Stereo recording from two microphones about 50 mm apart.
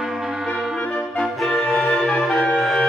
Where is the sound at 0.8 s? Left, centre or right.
Left.